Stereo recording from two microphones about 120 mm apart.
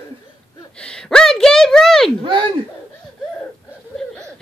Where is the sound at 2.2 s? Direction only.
45° right (ahead or behind).